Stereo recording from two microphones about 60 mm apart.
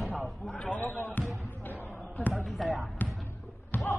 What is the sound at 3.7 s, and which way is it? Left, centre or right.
Basketball bounce, left.